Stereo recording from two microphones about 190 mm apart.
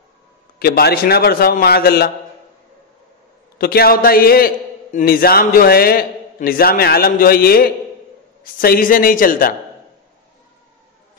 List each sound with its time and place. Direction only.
0.6 s a man's voice: 55° left (ahead or behind)
3.5 s a man's voice: 55° left (ahead or behind)